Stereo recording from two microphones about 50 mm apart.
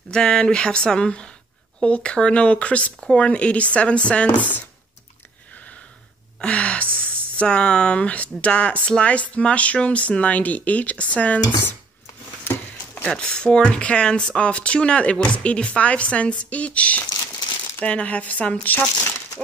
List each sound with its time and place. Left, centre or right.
0.1 s speech: centre
6.4 s speech: left
12.9 s speech: centre; by 18.8 s left